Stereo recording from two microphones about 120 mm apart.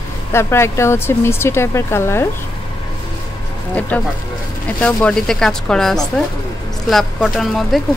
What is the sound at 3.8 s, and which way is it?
A woman's voice, 10° left (ahead or behind).